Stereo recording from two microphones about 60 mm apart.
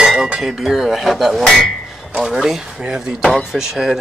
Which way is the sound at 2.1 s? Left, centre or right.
Centre.